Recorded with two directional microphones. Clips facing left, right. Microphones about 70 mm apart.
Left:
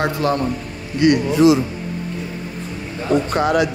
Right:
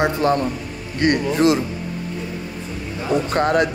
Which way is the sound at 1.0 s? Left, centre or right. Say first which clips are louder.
Left 3 dB; right.